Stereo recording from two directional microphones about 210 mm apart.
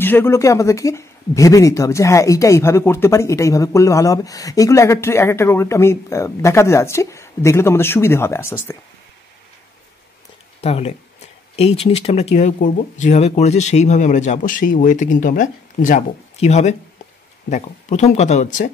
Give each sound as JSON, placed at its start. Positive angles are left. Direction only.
{"t": 0.0, "sound": "speech", "side_deg": 10}
{"t": 10.6, "sound": "speech", "side_deg": 30}